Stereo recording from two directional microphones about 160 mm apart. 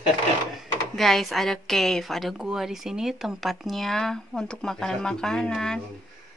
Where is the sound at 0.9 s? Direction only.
Centre (ahead or behind).